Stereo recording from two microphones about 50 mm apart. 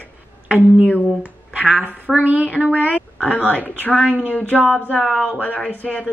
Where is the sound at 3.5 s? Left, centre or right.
Left.